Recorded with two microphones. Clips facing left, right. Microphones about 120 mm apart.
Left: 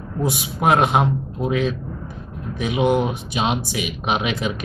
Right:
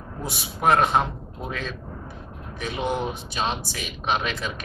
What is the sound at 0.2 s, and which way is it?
Speech, 15° left (ahead or behind).